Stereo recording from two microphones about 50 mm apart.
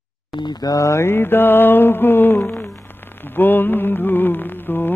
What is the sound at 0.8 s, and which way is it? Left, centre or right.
Mantra, left.